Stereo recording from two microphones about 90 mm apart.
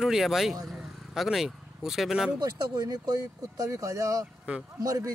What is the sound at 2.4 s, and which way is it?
Speech, 45° right (ahead or behind).